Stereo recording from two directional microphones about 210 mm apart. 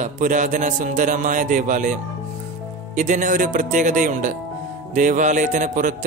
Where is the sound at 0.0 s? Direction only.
35° right (ahead or behind).